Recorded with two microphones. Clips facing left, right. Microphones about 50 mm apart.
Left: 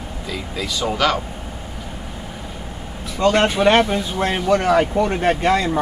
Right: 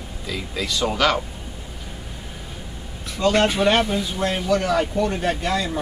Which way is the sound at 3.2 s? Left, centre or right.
Left.